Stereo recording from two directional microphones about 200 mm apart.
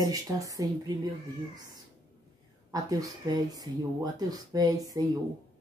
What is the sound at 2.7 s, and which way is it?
Speech, 15° right (ahead or behind).